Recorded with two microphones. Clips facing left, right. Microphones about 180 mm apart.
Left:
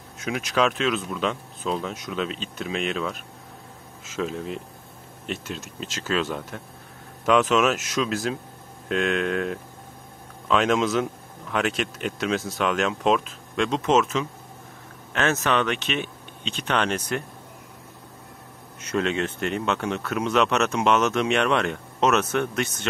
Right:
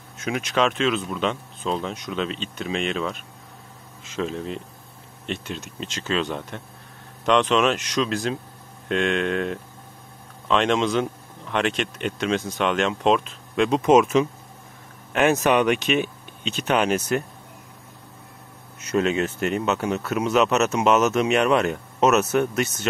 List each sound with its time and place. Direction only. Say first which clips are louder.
0.2 s speech: right 1 dB; centre (ahead or behind)
13.7 s speech: right 5 dB; 10° right (ahead or behind)
18.9 s speech: right 3 dB; 5° right (ahead or behind)